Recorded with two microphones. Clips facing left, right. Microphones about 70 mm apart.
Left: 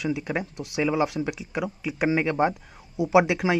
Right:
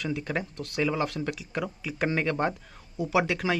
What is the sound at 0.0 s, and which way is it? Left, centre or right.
Speech, centre.